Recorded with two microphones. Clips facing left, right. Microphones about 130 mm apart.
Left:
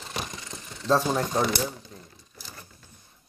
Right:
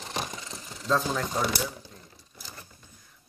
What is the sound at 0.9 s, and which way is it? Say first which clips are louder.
Speech: left 4 dB; 30° left (ahead or behind).